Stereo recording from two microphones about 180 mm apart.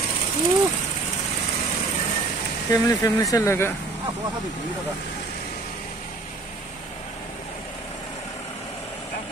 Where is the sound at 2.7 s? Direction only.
20° left (ahead or behind).